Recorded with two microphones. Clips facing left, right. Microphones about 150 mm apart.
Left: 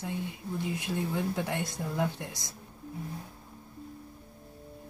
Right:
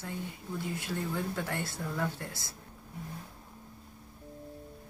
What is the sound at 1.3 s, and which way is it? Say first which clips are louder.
Speech: left 3 dB; 15° left (ahead or behind).